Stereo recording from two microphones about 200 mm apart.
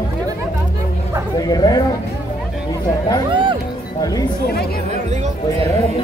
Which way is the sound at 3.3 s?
25° right (ahead or behind).